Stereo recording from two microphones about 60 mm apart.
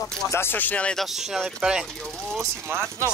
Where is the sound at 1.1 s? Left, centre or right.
Centre.